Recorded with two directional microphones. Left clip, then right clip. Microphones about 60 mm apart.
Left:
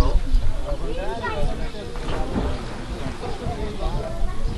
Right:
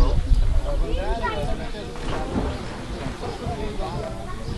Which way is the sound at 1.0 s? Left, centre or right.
Right.